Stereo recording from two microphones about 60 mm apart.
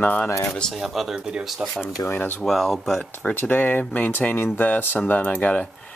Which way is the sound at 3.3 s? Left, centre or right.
Left.